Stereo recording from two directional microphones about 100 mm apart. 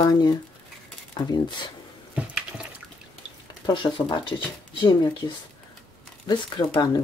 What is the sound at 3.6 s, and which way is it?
Speech, 50° left (ahead or behind).